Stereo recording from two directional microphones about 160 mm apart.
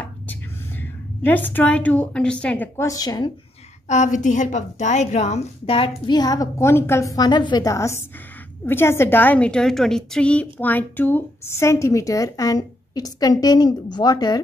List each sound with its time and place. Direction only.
0.3 s a woman's voice: 10° left (ahead or behind)
3.8 s a woman's voice: 50° left (ahead or behind); by 14.4 s 25° left (ahead or behind)